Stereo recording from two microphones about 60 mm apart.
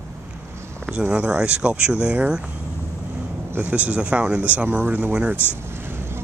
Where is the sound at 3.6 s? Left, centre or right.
Right.